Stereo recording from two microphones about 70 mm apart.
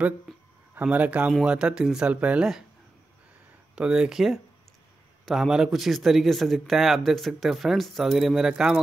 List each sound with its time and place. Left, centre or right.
0.7 s speech: right
3.7 s a man's voice: centre